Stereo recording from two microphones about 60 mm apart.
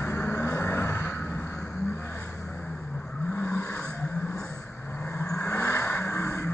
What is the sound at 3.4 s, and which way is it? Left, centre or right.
Vehicle, left.